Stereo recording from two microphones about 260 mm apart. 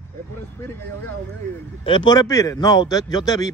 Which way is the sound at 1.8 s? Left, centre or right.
Centre.